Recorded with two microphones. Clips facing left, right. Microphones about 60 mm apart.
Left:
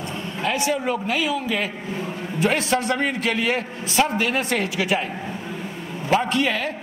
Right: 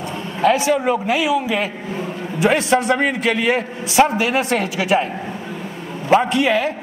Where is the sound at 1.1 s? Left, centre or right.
Centre.